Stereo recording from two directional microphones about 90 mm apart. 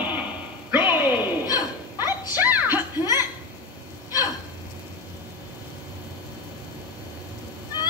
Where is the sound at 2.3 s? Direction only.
20° right (ahead or behind).